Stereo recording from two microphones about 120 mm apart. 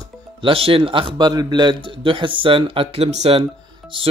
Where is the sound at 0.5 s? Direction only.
50° right (ahead or behind).